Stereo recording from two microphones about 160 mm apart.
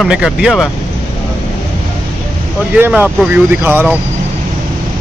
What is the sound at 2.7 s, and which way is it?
Speech, 10° right (ahead or behind).